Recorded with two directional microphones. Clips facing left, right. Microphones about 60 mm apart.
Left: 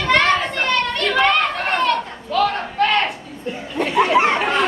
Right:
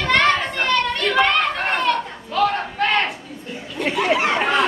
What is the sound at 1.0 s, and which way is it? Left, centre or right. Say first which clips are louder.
Children playing: left 3 dB; centre.